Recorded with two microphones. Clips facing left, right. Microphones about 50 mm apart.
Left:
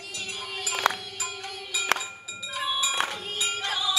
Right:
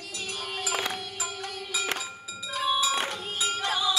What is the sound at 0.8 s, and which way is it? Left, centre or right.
Music, left.